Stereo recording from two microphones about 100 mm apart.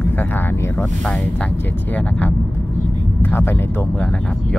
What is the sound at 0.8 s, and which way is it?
Speech, 5° left (ahead or behind).